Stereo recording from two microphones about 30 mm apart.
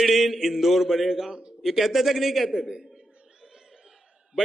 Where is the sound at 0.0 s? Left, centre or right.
Centre.